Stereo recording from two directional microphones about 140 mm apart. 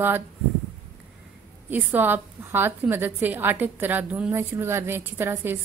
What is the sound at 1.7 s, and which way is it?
A woman's voice, 15° right (ahead or behind).